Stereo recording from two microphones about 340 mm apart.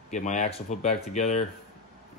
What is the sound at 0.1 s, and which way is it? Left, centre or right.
Speech, left.